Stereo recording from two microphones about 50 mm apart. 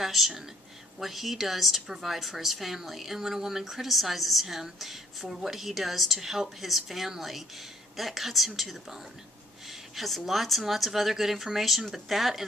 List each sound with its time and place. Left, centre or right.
0.0 s a woman's voice: centre
9.7 s a woman's voice: centre